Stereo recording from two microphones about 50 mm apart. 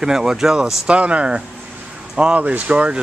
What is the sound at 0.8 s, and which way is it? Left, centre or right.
Speech, right.